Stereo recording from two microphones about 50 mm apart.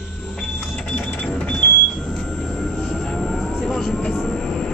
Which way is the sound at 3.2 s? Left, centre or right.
Centre.